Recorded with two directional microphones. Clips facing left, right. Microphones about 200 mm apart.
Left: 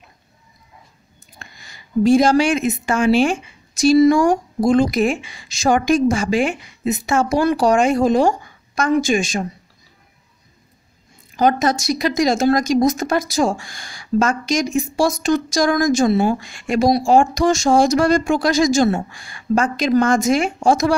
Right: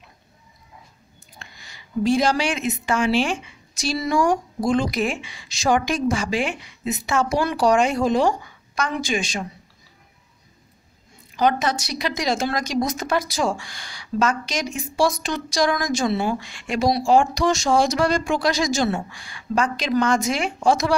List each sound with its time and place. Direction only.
1.4 s a woman's voice: 45° left (ahead or behind)
11.3 s a woman's voice: 45° left (ahead or behind)